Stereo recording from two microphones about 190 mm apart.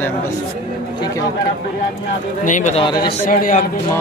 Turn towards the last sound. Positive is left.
turn(degrees=45)  # may be behind; listen again after turning